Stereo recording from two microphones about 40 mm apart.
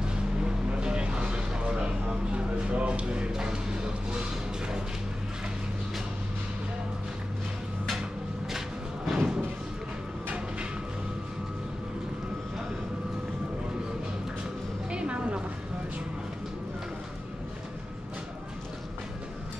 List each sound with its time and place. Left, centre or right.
0.0 s vehicle: right
3.3 s music: centre
8.5 s a sound: centre
14.9 s music: right